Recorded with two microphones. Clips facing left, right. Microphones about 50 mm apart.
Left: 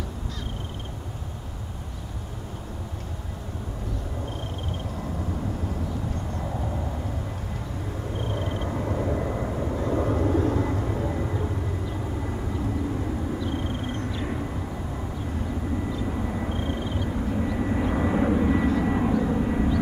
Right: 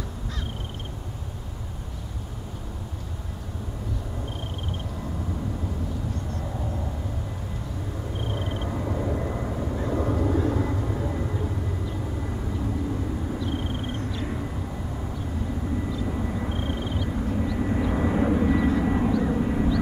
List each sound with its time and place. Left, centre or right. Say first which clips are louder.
8.2 s a sound: left 1 dB; centre
8.6 s vehicle: left 1 dB; centre
13.5 s a sound: even; centre
14.0 s vehicle: left 1 dB; centre
15.9 s vehicle: even; centre
16.4 s vehicle: left 1 dB; centre
17.1 s vehicle: even; centre